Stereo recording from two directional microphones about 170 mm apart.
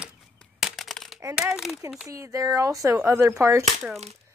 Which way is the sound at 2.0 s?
20° right (ahead or behind).